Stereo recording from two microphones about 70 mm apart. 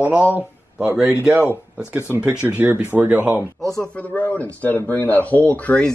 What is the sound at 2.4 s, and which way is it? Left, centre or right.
Speech, centre.